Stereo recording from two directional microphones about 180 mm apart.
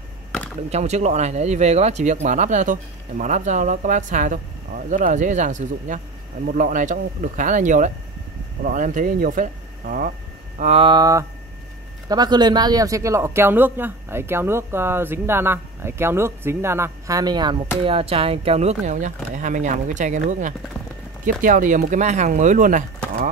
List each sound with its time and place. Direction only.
0.7 s speech: 40° right (ahead or behind)
10.6 s speech: 35° right (ahead or behind)